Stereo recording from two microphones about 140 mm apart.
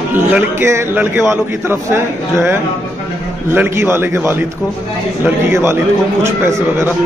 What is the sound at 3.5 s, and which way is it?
A man's voice, 15° right (ahead or behind).